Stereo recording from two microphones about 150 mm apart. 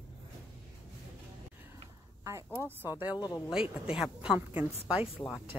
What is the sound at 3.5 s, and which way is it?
Speech, 5° right (ahead or behind).